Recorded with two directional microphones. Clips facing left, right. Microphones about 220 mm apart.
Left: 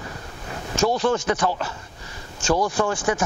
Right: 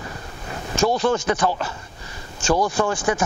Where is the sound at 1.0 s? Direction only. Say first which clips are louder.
Right 1 dB; 10° right (ahead or behind).